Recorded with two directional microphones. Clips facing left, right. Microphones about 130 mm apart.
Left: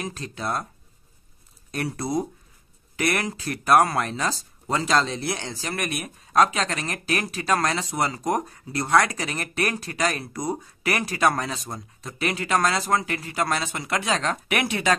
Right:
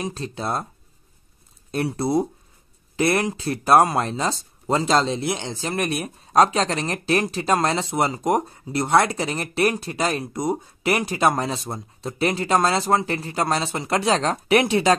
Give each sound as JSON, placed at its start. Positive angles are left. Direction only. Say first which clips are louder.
{"t": 0.0, "sound": "speech", "louder": "right 3 dB", "side_deg": -25}
{"t": 2.0, "sound": "speech", "louder": "right 5 dB", "side_deg": -25}